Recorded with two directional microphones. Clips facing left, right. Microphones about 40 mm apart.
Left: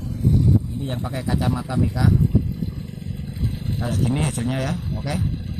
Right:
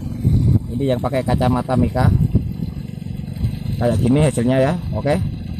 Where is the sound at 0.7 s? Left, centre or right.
Right.